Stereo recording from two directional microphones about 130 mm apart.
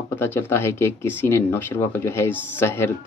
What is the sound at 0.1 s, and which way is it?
Speech, 15° left (ahead or behind).